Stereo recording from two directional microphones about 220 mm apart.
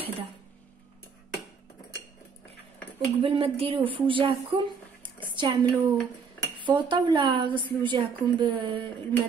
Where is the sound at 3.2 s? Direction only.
25° right (ahead or behind).